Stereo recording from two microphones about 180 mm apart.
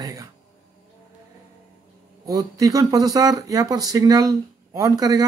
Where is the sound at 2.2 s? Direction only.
20° right (ahead or behind).